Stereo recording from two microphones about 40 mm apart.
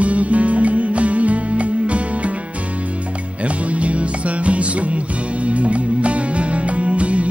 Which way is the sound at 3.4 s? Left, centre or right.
Right.